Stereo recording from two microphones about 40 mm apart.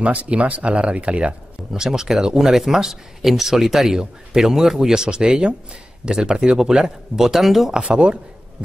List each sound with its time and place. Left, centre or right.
0.0 s speech: right
1.7 s speech: centre
7.8 s a man's voice: right